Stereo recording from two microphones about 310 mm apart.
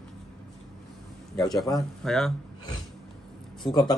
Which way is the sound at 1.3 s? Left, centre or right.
Centre.